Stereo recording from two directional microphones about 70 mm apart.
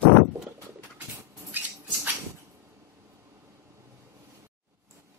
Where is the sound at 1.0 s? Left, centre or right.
Right.